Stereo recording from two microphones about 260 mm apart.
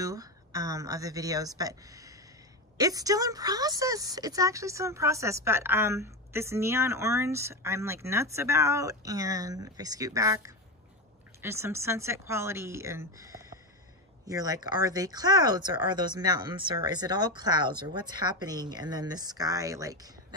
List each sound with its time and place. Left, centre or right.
0.0 s a woman's voice: centre